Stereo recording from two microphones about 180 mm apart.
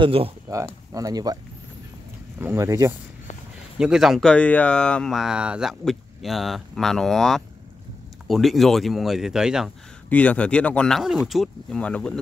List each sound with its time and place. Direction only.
0.0 s speech: 30° right (ahead or behind)
0.9 s speech: 20° right (ahead or behind)
3.7 s speech: 5° right (ahead or behind)
10.0 s speech: 10° left (ahead or behind)